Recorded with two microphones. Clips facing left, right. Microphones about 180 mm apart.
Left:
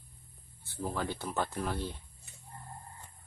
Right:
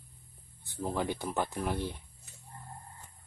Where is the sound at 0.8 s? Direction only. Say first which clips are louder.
Right 3 dB; 15° right (ahead or behind).